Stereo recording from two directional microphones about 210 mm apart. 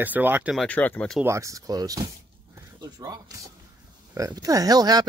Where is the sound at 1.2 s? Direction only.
15° right (ahead or behind).